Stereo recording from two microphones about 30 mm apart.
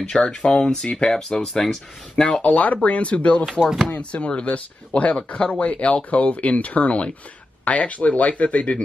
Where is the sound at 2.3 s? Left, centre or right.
Left.